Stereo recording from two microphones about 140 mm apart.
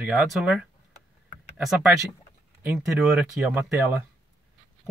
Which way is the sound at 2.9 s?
5° right (ahead or behind).